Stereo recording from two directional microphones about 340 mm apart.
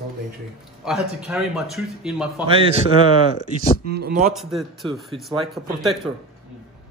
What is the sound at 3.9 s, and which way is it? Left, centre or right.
Speech, right.